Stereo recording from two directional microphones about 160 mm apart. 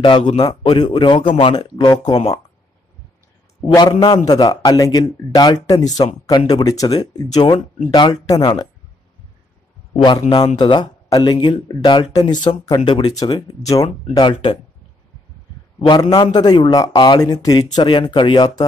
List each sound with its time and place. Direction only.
0.0 s a man's voice: 35° left (ahead or behind)
3.6 s speech: 30° left (ahead or behind)
10.6 s speech: 30° left (ahead or behind)
15.8 s speech: 25° left (ahead or behind)